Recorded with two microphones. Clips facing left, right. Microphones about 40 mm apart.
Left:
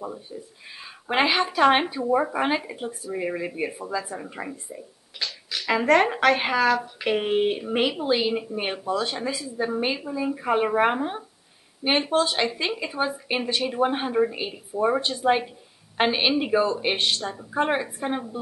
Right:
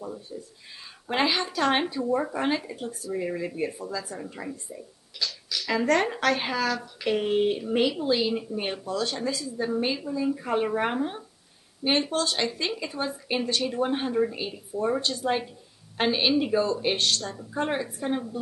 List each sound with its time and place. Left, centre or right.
0.0 s speech: left